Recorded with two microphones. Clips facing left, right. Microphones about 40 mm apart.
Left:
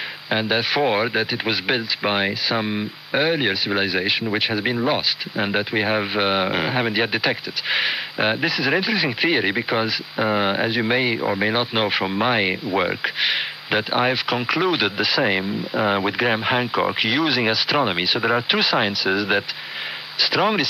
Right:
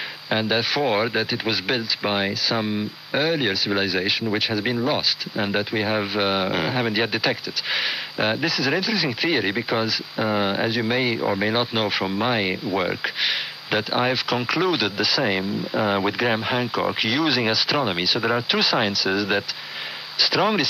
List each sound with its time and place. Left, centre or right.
0.3 s speech: centre